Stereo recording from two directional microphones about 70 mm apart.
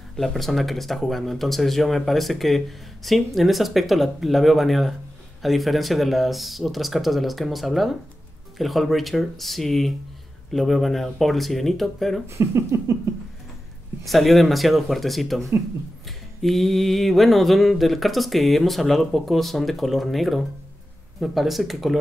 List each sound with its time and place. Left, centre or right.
0.1 s speech: centre
12.3 s speech: right
14.0 s speech: centre